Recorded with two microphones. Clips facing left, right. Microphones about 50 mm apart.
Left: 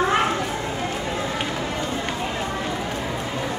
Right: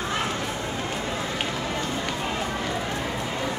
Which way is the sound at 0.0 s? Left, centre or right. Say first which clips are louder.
Left 7 dB; left.